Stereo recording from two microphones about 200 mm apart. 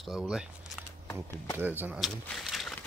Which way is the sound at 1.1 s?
15° left (ahead or behind).